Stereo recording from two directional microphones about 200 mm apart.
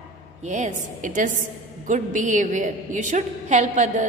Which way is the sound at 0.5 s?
35° right (ahead or behind).